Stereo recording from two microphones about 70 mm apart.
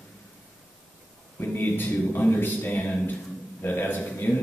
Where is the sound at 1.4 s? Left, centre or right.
Left.